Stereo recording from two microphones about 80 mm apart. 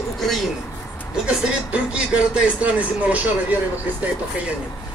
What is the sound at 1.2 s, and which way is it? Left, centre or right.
Speech, centre.